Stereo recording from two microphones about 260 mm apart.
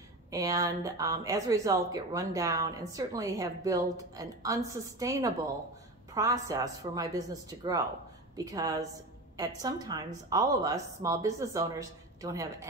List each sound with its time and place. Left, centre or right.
0.3 s speech: centre